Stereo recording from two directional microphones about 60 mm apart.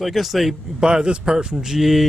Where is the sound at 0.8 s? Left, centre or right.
Centre.